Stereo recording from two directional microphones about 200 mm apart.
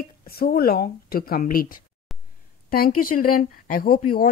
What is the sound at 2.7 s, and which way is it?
Speech, 45° left (ahead or behind).